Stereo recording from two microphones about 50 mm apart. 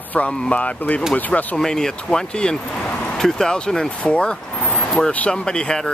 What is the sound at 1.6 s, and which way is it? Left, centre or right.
Speech, centre.